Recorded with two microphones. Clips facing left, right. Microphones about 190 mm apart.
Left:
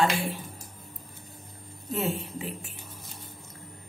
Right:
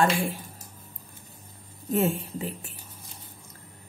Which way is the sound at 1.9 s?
50° right (ahead or behind).